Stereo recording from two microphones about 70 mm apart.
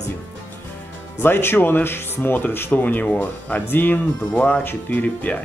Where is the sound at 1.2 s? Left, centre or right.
Left.